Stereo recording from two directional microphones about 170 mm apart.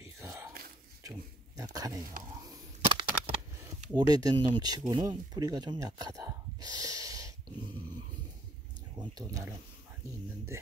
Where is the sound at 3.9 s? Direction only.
25° right (ahead or behind).